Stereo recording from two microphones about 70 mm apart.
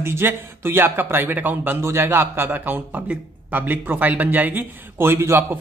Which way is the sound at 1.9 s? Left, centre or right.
Right.